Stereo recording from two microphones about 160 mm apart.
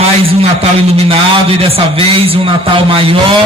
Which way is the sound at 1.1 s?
35° right (ahead or behind).